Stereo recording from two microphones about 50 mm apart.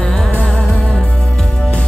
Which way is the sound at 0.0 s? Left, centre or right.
Centre.